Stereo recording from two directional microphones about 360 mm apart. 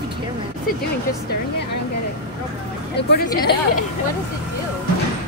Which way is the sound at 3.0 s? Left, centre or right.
Left.